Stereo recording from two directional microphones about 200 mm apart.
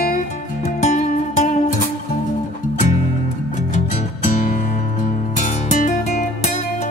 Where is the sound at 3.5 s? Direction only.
40° left (ahead or behind).